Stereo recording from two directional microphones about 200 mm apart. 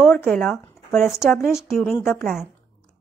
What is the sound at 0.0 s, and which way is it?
A woman's voice, 10° left (ahead or behind).